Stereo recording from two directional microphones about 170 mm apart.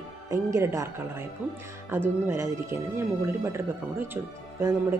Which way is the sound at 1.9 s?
15° right (ahead or behind).